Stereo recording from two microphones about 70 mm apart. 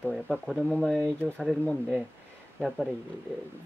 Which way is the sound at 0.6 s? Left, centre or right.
Centre.